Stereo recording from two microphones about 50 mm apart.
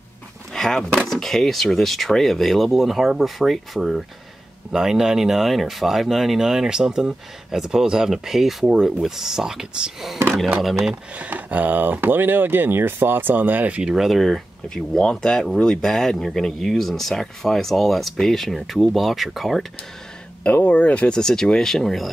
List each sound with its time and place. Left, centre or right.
0.5 s speech: centre
11.1 s speech: right
13.9 s speech: centre
20.6 s speech: left
21.2 s speech: centre